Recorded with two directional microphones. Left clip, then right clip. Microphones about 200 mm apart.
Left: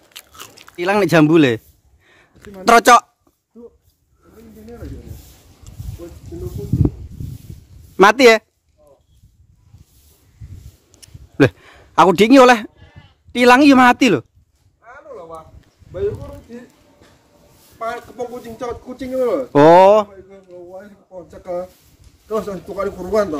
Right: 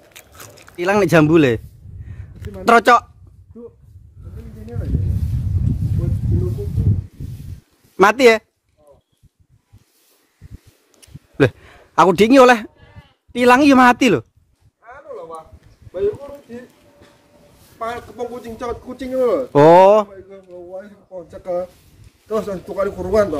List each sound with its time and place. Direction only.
0.1 s biting: 5° left (ahead or behind)
2.6 s speech: 15° left (ahead or behind)
7.9 s speech: 15° left (ahead or behind)
10.9 s a sound: 15° left (ahead or behind)
12.7 s sheep: 55° left (ahead or behind)
13.3 s speech: 10° left (ahead or behind)
14.8 s a sound: 10° left (ahead or behind)
16.5 s speech: 10° left (ahead or behind)
17.7 s speech: 10° left (ahead or behind)